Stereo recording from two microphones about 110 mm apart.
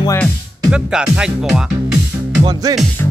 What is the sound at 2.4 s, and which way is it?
Music, 40° right (ahead or behind).